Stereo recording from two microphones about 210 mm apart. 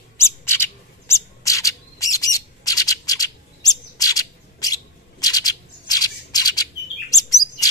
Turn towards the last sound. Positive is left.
turn(degrees=15)  # may be behind; listen again after turning